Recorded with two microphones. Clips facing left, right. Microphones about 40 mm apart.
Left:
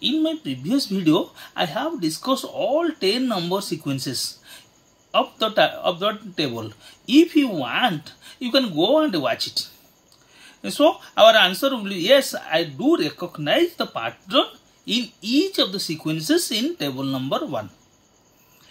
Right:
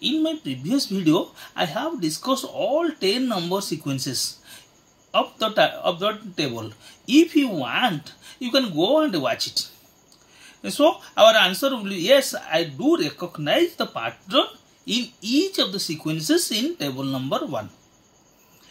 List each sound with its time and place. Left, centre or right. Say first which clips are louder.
0.2 s speech: left 1 dB; centre
8.2 s speech: left 1 dB; centre
15.1 s speech: left 1 dB; centre